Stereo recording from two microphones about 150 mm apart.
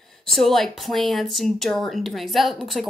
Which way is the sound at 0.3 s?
Centre (ahead or behind).